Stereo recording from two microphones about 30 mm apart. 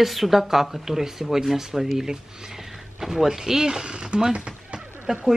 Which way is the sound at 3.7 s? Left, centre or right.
Right.